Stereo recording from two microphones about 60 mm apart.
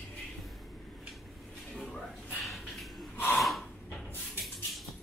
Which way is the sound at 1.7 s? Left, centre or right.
Centre.